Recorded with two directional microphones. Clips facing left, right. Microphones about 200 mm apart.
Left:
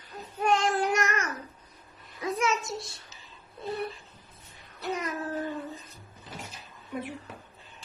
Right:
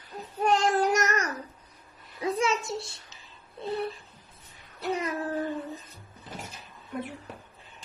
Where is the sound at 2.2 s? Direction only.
30° right (ahead or behind).